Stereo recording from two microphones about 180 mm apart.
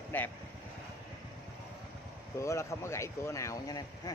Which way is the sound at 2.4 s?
15° left (ahead or behind).